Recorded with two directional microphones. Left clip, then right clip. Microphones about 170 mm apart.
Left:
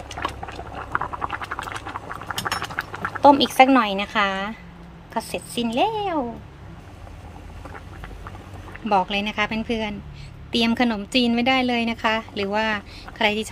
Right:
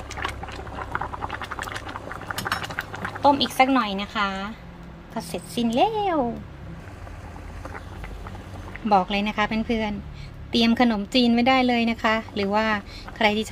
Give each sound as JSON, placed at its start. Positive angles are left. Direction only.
{"t": 0.2, "sound": "a sound", "side_deg": 20}
{"t": 3.2, "sound": "speech", "side_deg": 25}
{"t": 5.1, "sound": "a woman's voice", "side_deg": 10}
{"t": 8.8, "sound": "a woman's voice", "side_deg": 5}